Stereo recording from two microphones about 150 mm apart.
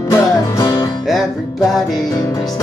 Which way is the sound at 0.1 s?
25° left (ahead or behind).